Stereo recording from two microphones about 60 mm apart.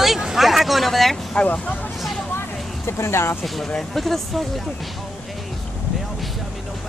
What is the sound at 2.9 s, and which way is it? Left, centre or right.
Speech, left.